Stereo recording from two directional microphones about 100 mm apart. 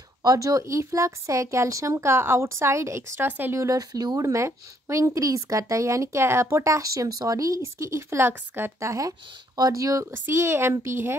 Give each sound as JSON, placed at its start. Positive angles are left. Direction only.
{"t": 0.2, "sound": "speech", "side_deg": -35}
{"t": 3.5, "sound": "a woman's voice", "side_deg": -35}